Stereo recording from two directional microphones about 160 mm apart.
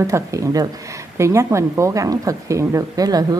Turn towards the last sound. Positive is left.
turn(degrees=-25)  # may be behind; listen again after turning